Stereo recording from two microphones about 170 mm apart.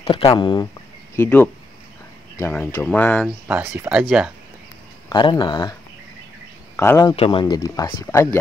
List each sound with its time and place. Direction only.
0.0 s speech: 30° left (ahead or behind)
1.1 s speech: 15° left (ahead or behind)
3.4 s speech: 10° right (ahead or behind)
5.1 s speech: 25° left (ahead or behind)
6.8 s speech: 15° left (ahead or behind)
7.2 s speech: 30° left (ahead or behind)